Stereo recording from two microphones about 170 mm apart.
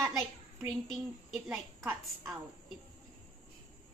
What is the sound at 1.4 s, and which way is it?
Speech, 10° right (ahead or behind).